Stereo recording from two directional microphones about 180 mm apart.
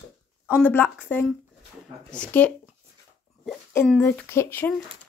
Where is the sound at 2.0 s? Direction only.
5° left (ahead or behind).